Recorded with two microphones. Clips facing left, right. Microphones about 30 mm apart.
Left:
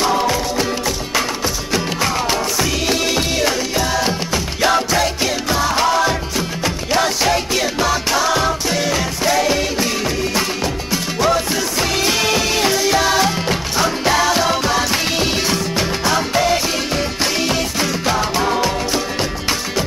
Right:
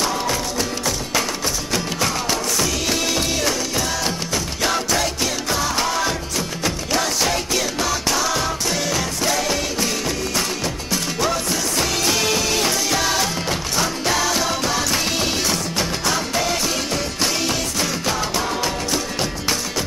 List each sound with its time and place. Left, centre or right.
0.0 s music: centre
10.9 s music: centre